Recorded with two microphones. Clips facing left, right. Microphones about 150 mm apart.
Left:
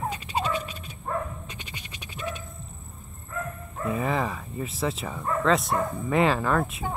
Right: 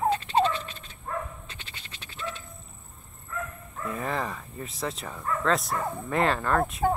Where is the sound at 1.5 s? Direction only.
15° left (ahead or behind).